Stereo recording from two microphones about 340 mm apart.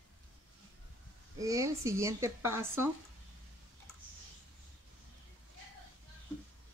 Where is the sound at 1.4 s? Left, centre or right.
Centre.